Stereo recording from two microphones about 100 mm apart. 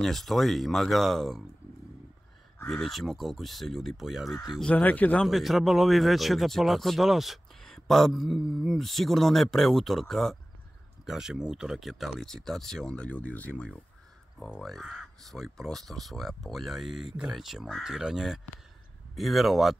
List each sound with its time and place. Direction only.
0.0 s speech: centre (ahead or behind)
2.6 s speech: 5° left (ahead or behind)
4.7 s speech: 15° left (ahead or behind)
5.2 s speech: centre (ahead or behind)
14.6 s speech: centre (ahead or behind)